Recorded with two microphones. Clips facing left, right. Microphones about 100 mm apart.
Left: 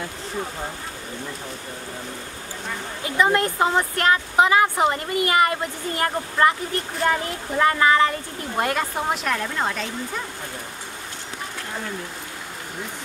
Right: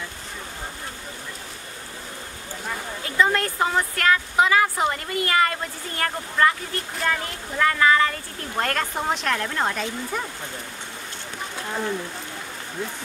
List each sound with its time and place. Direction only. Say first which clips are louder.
3.2 s a woman's voice: left 2 dB; 20° left (ahead or behind); by 9.8 s centre (ahead or behind)